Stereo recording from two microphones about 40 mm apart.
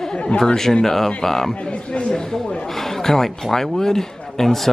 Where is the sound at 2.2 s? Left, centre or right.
Centre.